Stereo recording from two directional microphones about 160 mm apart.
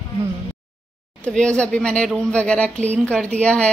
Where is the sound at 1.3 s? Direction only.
5° left (ahead or behind).